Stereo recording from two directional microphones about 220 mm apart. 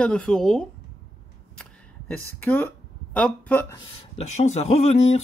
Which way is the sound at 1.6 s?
5° left (ahead or behind).